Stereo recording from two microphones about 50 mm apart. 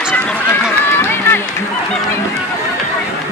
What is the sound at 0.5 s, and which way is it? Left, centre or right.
Run, left.